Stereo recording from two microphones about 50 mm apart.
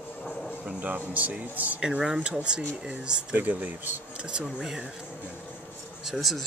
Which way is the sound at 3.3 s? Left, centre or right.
Right.